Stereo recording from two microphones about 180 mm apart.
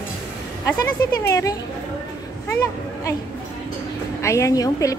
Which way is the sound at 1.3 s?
15° left (ahead or behind).